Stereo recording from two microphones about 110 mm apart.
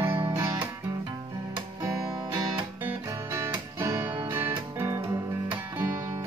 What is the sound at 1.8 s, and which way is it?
Music, 30° right (ahead or behind).